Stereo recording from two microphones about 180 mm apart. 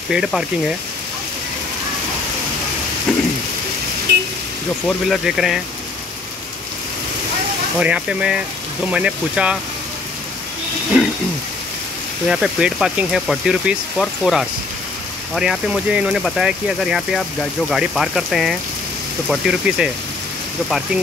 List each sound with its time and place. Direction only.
0.1 s speech: centre (ahead or behind)
3.1 s rain: centre (ahead or behind)
4.1 s a sound: 70° right (ahead or behind)
4.8 s speech: centre (ahead or behind)
7.8 s speech: 5° right (ahead or behind)
10.9 s a sound: 5° right (ahead or behind)
12.3 s speech: 5° right (ahead or behind)